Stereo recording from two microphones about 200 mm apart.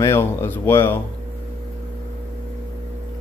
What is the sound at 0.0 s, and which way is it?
A man's voice, 15° left (ahead or behind).